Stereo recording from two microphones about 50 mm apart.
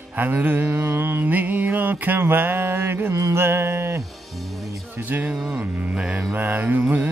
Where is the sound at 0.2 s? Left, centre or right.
Right.